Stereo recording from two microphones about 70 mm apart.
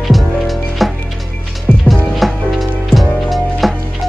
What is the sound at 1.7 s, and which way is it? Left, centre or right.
Music, centre.